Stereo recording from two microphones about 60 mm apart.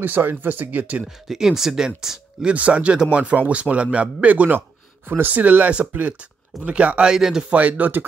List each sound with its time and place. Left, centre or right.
0.0 s speech: right
1.3 s speech: centre
2.5 s a man's voice: right
4.6 s speech: right; by 7.4 s centre
7.4 s a man's voice: right